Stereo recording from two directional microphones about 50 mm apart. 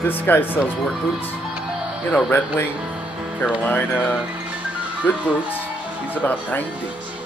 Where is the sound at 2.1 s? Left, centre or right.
Left.